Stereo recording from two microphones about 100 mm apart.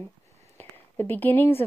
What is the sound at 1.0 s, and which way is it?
Speech, 20° left (ahead or behind).